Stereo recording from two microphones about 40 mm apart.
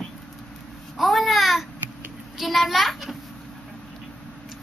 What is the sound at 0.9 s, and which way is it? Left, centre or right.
Babbling, centre.